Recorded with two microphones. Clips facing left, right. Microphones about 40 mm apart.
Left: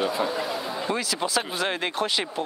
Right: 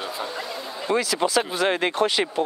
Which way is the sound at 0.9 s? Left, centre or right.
Right.